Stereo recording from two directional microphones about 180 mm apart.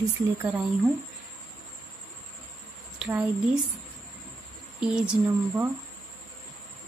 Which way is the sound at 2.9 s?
5° right (ahead or behind).